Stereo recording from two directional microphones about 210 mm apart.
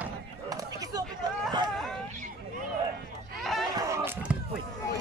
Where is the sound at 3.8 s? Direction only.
15° right (ahead or behind).